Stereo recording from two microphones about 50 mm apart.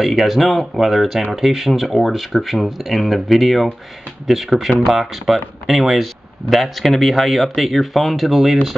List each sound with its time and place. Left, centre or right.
0.0 s speech: centre